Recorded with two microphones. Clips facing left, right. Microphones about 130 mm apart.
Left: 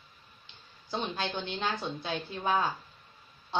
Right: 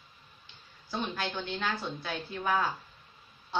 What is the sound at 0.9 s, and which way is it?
Speech, 20° left (ahead or behind).